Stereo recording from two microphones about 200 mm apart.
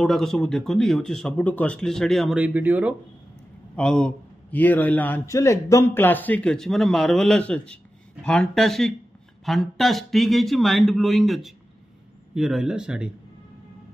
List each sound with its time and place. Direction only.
0.0 s a man's voice: centre (ahead or behind)
3.7 s a man's voice: 5° left (ahead or behind)